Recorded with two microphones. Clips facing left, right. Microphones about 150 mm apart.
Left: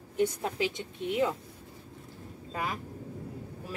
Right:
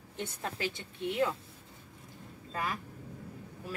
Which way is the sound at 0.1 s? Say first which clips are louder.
Left 10 dB; 15° left (ahead or behind).